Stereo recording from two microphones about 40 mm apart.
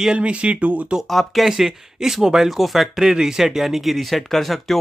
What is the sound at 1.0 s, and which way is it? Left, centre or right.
Speech, centre.